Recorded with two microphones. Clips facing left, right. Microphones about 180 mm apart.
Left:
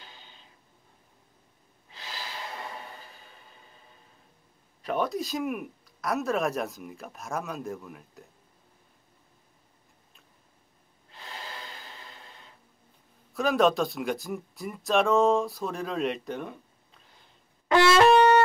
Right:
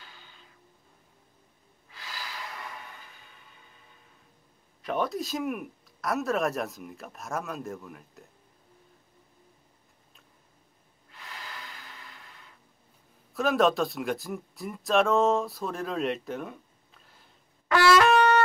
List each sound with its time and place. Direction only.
0.0 s a sound: 20° left (ahead or behind)
1.9 s snort: 25° left (ahead or behind)
4.8 s speech: centre (ahead or behind)
11.1 s breathing: 30° left (ahead or behind)
13.3 s speech: centre (ahead or behind)
17.6 s wind instrument: 25° left (ahead or behind)